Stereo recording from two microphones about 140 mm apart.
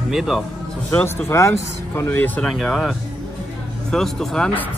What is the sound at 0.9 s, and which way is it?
Speech, 15° left (ahead or behind).